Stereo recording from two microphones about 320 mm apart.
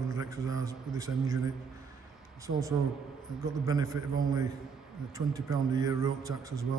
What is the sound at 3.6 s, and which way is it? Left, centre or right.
Speech, centre.